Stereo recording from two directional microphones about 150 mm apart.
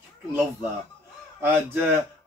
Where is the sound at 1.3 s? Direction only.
15° right (ahead or behind).